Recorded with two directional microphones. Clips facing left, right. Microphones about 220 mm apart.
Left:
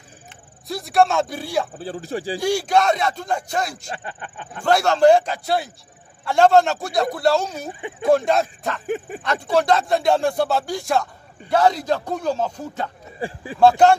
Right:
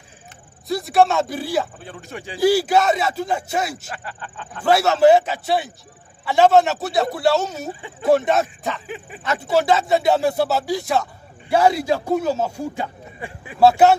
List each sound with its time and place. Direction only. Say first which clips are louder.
0.7 s speech: right 2 dB; centre (ahead or behind)
1.7 s speech: left 7 dB; 30° left (ahead or behind)
2.3 s speech: right 4 dB; 5° right (ahead or behind)
3.9 s speech: left 1 dB; 25° left (ahead or behind)
4.6 s speech: right 1 dB; 5° right (ahead or behind)
8.8 s speech: left 8 dB; 50° left (ahead or behind)
9.2 s speech: right 2 dB; 5° right (ahead or behind)
13.2 s speech: left 7 dB; 30° left (ahead or behind)
13.6 s speech: even; 5° right (ahead or behind)